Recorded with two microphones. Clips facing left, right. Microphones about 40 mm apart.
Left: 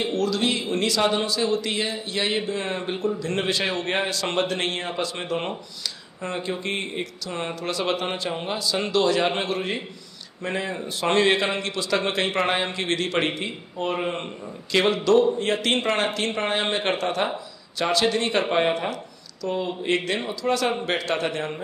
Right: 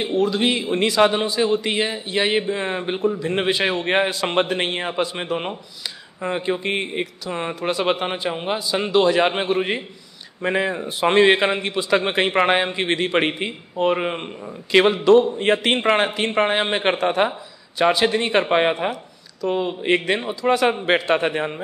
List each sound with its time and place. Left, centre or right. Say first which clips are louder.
0.0 s a man's voice: right 4 dB; right